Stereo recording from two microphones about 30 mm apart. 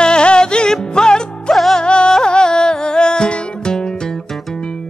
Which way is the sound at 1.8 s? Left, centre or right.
Left.